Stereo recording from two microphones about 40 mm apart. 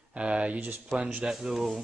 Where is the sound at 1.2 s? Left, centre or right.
Centre.